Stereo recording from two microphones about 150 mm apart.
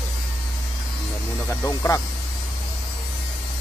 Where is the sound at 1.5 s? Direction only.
15° left (ahead or behind).